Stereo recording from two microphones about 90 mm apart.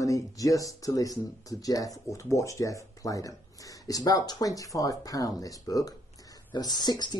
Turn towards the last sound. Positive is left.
turn(degrees=55)  # may be behind; listen again after turning